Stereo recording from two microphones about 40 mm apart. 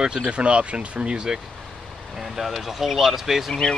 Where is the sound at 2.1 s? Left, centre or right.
Centre.